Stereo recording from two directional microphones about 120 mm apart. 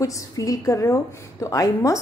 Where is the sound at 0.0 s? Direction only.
30° left (ahead or behind).